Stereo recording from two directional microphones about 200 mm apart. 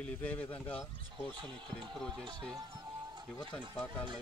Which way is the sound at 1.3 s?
25° right (ahead or behind).